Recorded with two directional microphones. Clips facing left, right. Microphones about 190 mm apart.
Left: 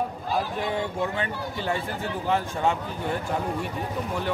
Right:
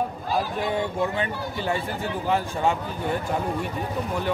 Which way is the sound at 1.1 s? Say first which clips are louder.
Right 2 dB; 15° right (ahead or behind).